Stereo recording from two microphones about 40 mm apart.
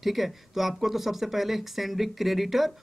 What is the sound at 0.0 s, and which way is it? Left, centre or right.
Speech, centre.